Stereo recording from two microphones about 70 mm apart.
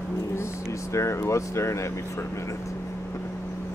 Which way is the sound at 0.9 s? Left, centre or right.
Left.